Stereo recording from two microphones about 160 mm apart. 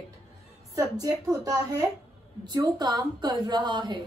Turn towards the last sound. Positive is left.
turn(degrees=-30)  # may be behind; listen again after turning